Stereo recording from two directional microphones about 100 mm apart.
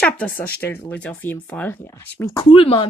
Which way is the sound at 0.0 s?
5° left (ahead or behind).